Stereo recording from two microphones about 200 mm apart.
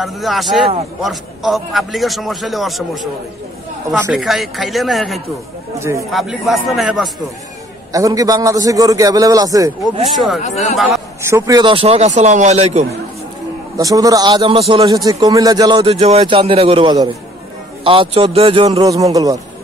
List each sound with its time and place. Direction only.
0.0 s a man's voice: centre (ahead or behind)
5.8 s a man's voice: 15° right (ahead or behind)
6.1 s a man's voice: centre (ahead or behind)
7.9 s a man's voice: 15° right (ahead or behind)
10.4 s speech: 35° left (ahead or behind)
11.2 s speech: 15° right (ahead or behind); by 12.8 s 35° right (ahead or behind)
13.7 s a man's voice: 15° right (ahead or behind)